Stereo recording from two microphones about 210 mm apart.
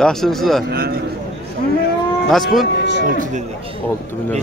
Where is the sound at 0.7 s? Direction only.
45° right (ahead or behind).